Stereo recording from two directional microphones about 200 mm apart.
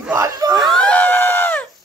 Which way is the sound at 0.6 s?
5° left (ahead or behind).